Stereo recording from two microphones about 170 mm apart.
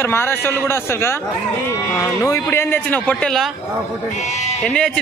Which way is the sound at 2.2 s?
15° left (ahead or behind).